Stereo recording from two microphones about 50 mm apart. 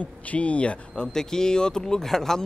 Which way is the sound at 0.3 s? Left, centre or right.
Left.